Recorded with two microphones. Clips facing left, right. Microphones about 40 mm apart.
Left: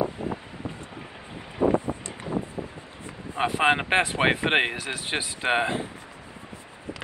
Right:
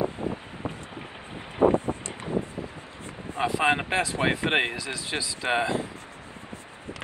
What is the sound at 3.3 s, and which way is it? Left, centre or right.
Speech, left.